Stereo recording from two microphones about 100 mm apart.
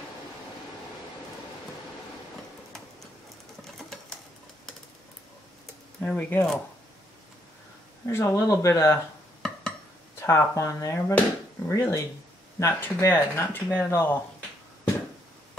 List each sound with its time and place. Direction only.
3.6 s pigeon: 5° left (ahead or behind)
5.9 s speech: 20° left (ahead or behind)
8.1 s speech: 25° left (ahead or behind)
9.4 s a sound: 10° left (ahead or behind)
10.1 s speech: 25° left (ahead or behind)